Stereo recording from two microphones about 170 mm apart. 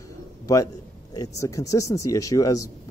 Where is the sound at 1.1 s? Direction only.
20° left (ahead or behind).